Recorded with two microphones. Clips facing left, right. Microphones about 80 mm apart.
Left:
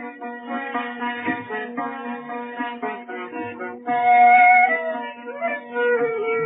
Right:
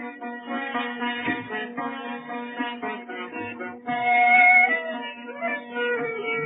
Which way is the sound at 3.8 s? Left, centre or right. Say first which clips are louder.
Left 6 dB; centre.